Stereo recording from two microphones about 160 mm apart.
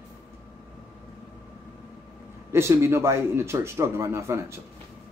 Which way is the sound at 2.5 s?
15° right (ahead or behind).